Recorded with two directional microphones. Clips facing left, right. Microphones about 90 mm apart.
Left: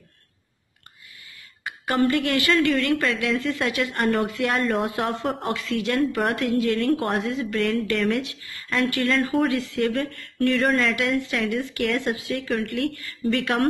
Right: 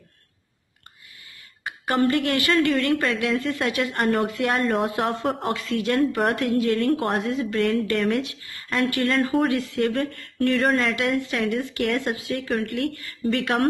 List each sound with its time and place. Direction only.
1.6 s speech: 30° right (ahead or behind)